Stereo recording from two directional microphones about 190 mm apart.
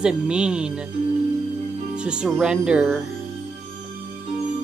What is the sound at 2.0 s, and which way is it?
Music, centre (ahead or behind).